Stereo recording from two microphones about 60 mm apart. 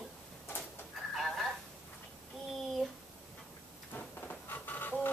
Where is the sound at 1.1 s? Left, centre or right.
Centre.